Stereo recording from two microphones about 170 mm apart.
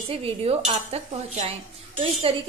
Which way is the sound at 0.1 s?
35° right (ahead or behind).